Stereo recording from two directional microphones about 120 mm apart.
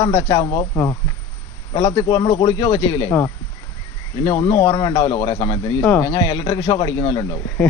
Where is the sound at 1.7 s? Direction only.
35° left (ahead or behind).